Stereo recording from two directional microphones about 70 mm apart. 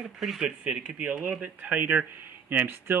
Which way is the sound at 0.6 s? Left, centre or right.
Right.